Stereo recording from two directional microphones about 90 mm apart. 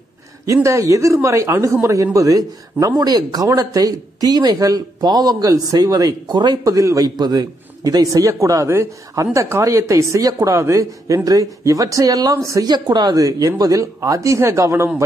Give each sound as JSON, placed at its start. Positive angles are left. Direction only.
{"t": 0.5, "sound": "speech", "side_deg": -35}
{"t": 12.6, "sound": "speech", "side_deg": -50}